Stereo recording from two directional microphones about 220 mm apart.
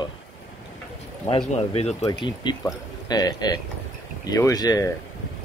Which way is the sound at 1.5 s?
25° left (ahead or behind).